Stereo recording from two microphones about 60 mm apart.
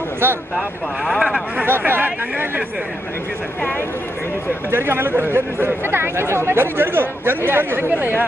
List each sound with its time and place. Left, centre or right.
0.6 s speech: centre
1.7 s speech: right
4.6 s speech: right